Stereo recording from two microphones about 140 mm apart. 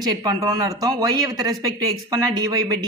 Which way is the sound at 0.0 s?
30° right (ahead or behind).